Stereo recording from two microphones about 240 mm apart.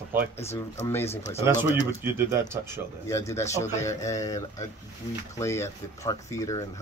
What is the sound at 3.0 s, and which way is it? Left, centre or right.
Speech, centre.